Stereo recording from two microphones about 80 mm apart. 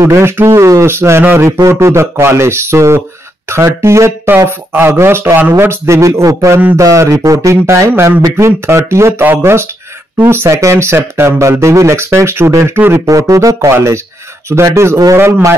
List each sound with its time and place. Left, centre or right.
0.0 s speech: right
13.0 s speech: right